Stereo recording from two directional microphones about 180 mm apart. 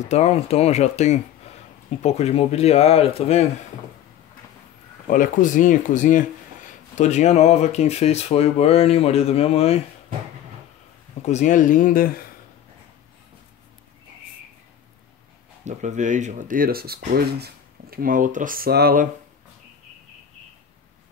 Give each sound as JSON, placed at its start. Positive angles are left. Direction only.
{"t": 0.1, "sound": "speech", "side_deg": 35}
{"t": 5.1, "sound": "speech", "side_deg": 45}
{"t": 11.2, "sound": "speech", "side_deg": 40}
{"t": 15.6, "sound": "speech", "side_deg": -40}